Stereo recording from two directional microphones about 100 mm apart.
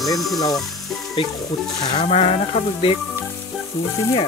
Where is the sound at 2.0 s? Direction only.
90° left.